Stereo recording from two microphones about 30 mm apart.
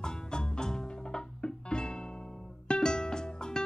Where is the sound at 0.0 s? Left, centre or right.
Left.